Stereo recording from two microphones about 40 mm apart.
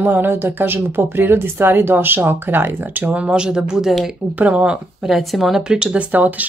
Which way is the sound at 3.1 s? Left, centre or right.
Right.